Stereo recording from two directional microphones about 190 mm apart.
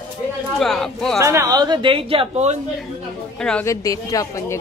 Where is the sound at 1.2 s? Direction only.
15° right (ahead or behind); by 2.6 s 35° right (ahead or behind).